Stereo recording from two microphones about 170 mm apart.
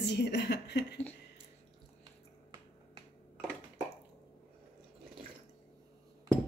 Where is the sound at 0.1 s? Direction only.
90° left.